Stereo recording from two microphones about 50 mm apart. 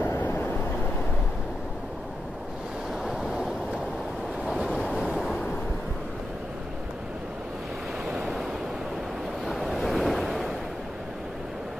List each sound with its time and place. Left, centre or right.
0.3 s vehicle: left
4.5 s waves: centre
8.1 s waves: centre
9.5 s waves: centre